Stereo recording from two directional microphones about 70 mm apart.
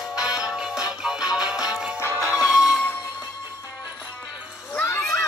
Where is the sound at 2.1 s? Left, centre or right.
Right.